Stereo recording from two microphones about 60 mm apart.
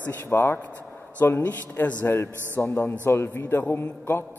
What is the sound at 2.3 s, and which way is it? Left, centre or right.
Speech, right.